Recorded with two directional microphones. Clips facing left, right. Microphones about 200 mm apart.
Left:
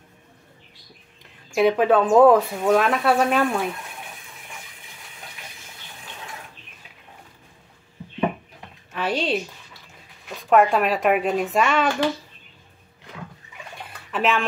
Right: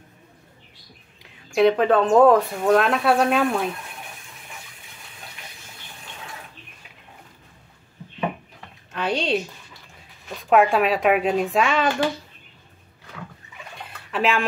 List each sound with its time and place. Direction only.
1.2 s speech: 5° left (ahead or behind)
8.9 s speech: 5° left (ahead or behind)
14.1 s speech: centre (ahead or behind)